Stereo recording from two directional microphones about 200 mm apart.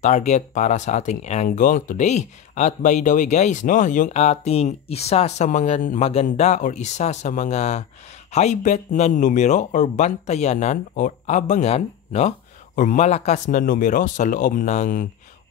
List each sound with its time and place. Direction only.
0.0 s speech: 35° left (ahead or behind)